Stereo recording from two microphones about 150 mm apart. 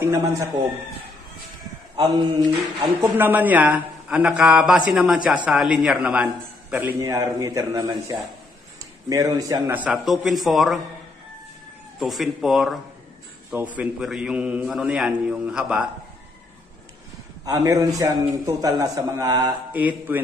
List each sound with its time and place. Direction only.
0.0 s a man's voice: 20° right (ahead or behind)
2.0 s speech: 30° right (ahead or behind)
3.0 s a man's voice: 15° right (ahead or behind)
7.0 s a man's voice: 20° right (ahead or behind)
9.8 s a man's voice: 5° right (ahead or behind)
12.0 s a man's voice: centre (ahead or behind)
13.7 s a man's voice: 5° right (ahead or behind)
17.5 s a man's voice: 20° right (ahead or behind)
19.7 s a man's voice: 10° right (ahead or behind)